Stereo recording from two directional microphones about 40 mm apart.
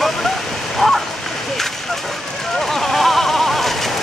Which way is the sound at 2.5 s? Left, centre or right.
Centre.